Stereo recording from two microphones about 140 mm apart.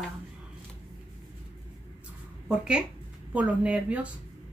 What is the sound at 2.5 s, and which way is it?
A woman's voice, 5° right (ahead or behind).